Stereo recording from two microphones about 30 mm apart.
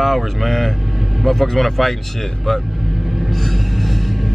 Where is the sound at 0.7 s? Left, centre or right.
Centre.